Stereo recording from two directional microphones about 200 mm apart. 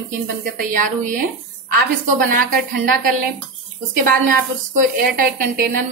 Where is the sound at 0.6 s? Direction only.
45° right (ahead or behind).